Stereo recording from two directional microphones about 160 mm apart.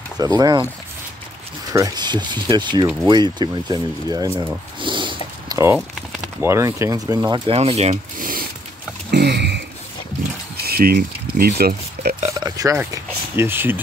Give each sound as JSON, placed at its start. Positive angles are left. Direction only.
{"t": 0.2, "sound": "speech", "side_deg": -25}
{"t": 1.7, "sound": "speech", "side_deg": -20}
{"t": 4.7, "sound": "sniff", "side_deg": -30}
{"t": 6.4, "sound": "speech", "side_deg": -15}
{"t": 7.5, "sound": "mechanisms", "side_deg": -40}
{"t": 9.1, "sound": "a sound", "side_deg": -90}
{"t": 10.6, "sound": "a sound", "side_deg": -70}
{"t": 12.3, "sound": "speech", "side_deg": -20}